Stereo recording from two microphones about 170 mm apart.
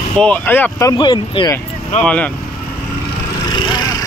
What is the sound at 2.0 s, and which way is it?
Speech, 5° left (ahead or behind).